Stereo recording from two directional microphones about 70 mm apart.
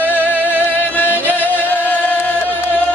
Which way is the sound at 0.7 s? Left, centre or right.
Left.